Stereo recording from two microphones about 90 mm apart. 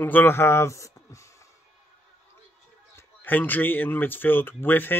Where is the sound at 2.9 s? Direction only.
20° left (ahead or behind).